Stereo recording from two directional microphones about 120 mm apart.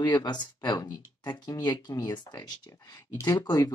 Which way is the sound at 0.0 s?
35° left (ahead or behind).